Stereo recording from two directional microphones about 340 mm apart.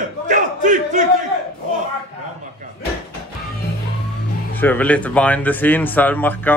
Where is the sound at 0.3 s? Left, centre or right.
Right.